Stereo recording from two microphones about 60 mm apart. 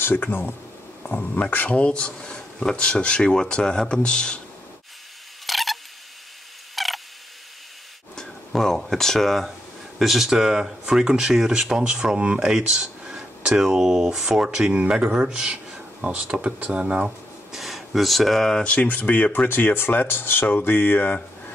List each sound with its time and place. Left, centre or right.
0.0 s speech: left; by 4.4 s centre
5.5 s a sound: centre
8.2 s speech: centre
17.6 s speech: centre
18.6 s speech: left